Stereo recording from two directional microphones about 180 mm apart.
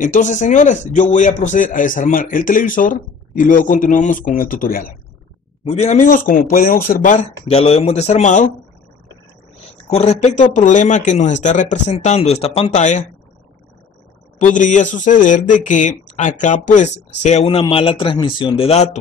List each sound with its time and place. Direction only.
0.0 s a man's voice: 45° left (ahead or behind)
5.6 s a man's voice: 40° left (ahead or behind)
9.8 s a man's voice: 35° left (ahead or behind)
14.4 s a man's voice: 45° left (ahead or behind)